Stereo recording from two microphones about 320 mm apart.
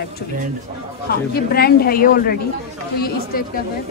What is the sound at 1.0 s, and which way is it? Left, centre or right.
A woman's voice, left.